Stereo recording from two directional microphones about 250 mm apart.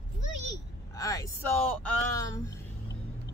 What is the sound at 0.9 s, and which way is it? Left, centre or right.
Speech, centre.